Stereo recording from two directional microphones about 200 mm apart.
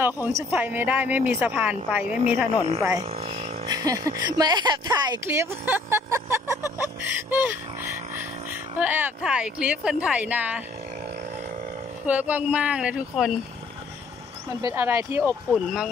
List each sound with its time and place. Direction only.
0.4 s speech: 10° right (ahead or behind)
3.2 s vehicle: 30° right (ahead or behind)
3.7 s speech: 20° right (ahead or behind)
12.1 s speech: 10° right (ahead or behind)
14.6 s speech: 15° right (ahead or behind)